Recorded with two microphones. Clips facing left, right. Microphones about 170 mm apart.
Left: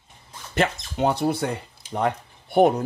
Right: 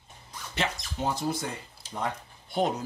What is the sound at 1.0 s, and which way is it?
Speech, 65° left (ahead or behind).